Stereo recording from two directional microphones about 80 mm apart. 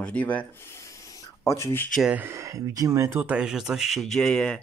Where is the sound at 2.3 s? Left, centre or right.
Right.